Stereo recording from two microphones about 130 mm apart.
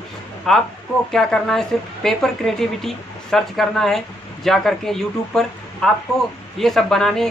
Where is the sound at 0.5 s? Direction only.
5° left (ahead or behind).